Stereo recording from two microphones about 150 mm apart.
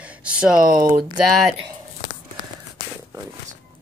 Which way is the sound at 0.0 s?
10° right (ahead or behind).